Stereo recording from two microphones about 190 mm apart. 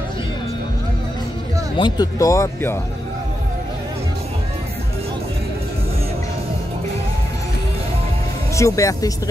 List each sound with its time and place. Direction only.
1.8 s speech: 20° left (ahead or behind)
8.5 s speech: 15° left (ahead or behind)